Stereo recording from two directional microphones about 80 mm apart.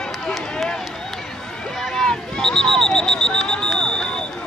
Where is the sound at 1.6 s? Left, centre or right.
Centre.